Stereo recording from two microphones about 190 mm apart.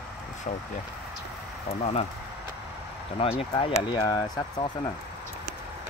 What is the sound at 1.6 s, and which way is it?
Speech, 35° left (ahead or behind).